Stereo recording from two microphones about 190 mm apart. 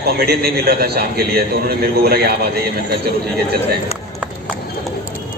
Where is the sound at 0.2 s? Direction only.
55° right (ahead or behind).